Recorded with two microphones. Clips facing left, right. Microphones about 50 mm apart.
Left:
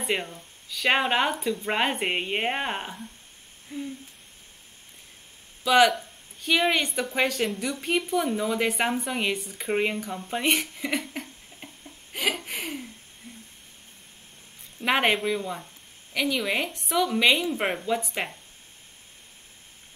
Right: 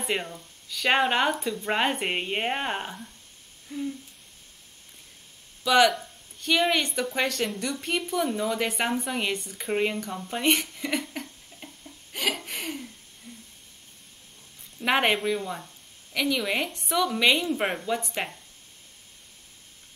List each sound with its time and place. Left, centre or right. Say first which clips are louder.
0.0 s speech: left 1 dB; centre
3.7 s a sound: right 2 dB; left
5.6 s a woman's voice: left 1 dB; centre
14.8 s speech: even; centre